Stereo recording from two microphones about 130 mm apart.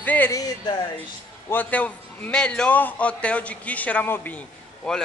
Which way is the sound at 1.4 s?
15° left (ahead or behind).